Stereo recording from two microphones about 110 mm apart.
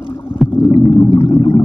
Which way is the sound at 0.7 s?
50° left (ahead or behind).